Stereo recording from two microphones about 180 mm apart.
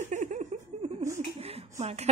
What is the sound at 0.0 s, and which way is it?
Giggle, 40° right (ahead or behind).